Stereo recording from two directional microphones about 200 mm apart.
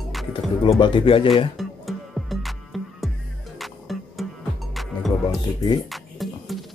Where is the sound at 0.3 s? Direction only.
25° left (ahead or behind).